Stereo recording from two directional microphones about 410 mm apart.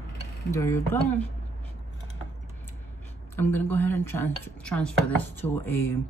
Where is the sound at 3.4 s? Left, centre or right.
Centre.